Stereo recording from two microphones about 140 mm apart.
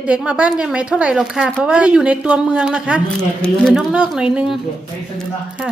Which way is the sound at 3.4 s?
5° left (ahead or behind).